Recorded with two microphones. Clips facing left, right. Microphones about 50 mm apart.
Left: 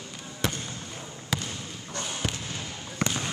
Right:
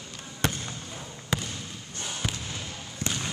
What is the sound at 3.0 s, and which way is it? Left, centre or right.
Basketball bounce, left.